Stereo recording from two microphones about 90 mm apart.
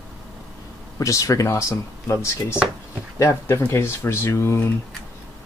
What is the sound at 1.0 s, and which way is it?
Speech, 40° left (ahead or behind).